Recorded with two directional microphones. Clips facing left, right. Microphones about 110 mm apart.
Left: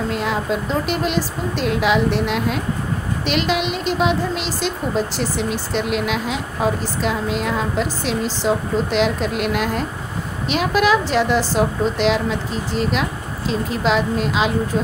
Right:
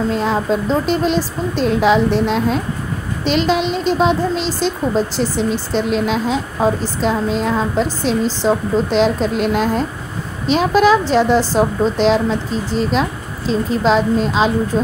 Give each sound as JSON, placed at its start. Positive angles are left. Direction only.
{"t": 0.1, "sound": "a woman's voice", "side_deg": -35}